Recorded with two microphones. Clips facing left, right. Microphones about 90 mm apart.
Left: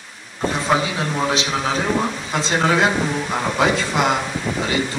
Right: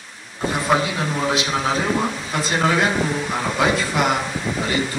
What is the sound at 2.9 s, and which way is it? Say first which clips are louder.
Speech: left 1 dB; 5° left (ahead or behind).